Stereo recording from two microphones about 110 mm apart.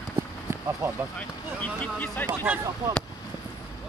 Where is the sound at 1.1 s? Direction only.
15° left (ahead or behind).